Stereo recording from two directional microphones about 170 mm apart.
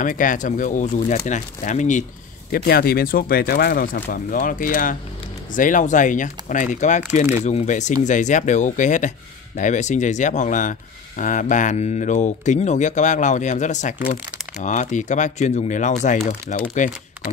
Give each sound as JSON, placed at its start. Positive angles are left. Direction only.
{"t": 0.0, "sound": "speech", "side_deg": 50}
{"t": 2.5, "sound": "speech", "side_deg": 60}